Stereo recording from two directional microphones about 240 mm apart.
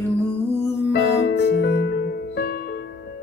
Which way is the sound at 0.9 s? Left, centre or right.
Left.